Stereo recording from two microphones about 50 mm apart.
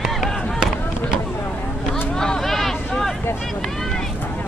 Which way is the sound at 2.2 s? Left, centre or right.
Centre.